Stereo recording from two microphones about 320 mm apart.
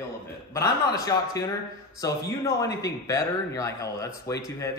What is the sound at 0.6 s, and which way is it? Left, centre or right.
Speech, centre.